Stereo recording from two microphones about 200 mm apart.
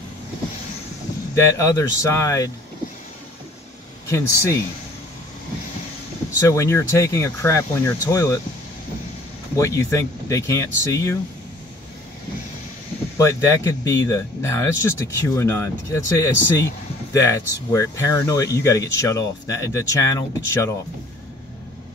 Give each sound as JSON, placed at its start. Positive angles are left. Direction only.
{"t": 1.3, "sound": "speech", "side_deg": 15}
{"t": 4.1, "sound": "speech", "side_deg": 15}
{"t": 6.4, "sound": "speech", "side_deg": 15}
{"t": 9.6, "sound": "speech", "side_deg": 15}
{"t": 13.2, "sound": "speech", "side_deg": 15}